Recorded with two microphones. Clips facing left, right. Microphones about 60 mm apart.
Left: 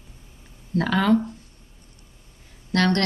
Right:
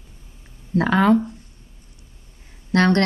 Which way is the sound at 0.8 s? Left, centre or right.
Right.